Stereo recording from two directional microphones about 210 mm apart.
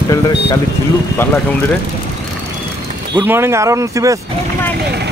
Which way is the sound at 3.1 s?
10° right (ahead or behind).